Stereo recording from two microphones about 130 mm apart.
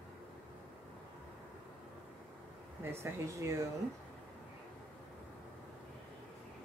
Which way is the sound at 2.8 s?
20° right (ahead or behind).